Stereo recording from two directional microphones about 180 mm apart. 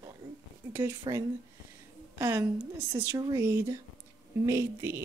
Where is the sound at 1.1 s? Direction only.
25° right (ahead or behind).